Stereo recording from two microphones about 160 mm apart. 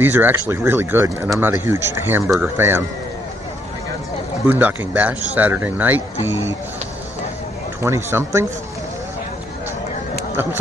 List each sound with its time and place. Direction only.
0.0 s speech: 10° right (ahead or behind)
2.2 s speech: centre (ahead or behind)
2.5 s speech: 15° right (ahead or behind)
4.5 s speech: 10° right (ahead or behind)
7.8 s speech: 15° right (ahead or behind)